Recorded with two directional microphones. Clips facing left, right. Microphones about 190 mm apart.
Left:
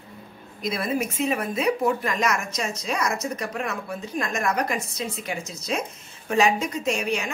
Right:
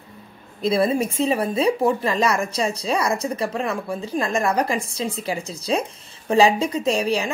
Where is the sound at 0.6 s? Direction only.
30° right (ahead or behind).